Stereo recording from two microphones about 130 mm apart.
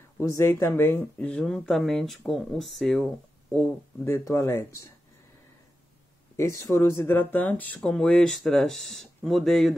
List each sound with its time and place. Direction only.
0.2 s speech: 20° left (ahead or behind); by 3.1 s centre (ahead or behind)
3.5 s speech: 15° left (ahead or behind)
6.3 s speech: 20° left (ahead or behind); by 9.8 s centre (ahead or behind)